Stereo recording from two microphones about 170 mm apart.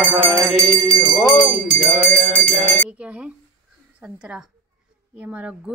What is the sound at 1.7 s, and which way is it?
Music, 40° right (ahead or behind).